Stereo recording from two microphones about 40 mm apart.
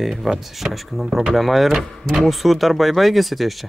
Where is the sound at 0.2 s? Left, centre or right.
Centre.